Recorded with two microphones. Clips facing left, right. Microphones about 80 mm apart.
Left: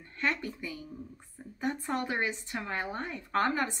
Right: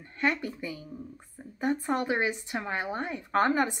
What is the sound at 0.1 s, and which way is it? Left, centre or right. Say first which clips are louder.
Speech: right 4 dB; centre.